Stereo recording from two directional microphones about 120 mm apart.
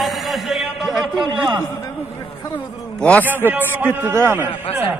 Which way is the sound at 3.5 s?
15° right (ahead or behind).